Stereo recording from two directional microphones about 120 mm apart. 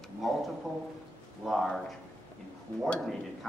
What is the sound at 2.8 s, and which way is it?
Speech, centre (ahead or behind).